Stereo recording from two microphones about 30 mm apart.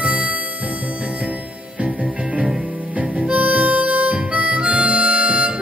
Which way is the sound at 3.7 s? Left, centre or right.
Right.